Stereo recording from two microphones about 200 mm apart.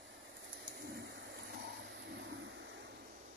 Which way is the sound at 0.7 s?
50° right (ahead or behind).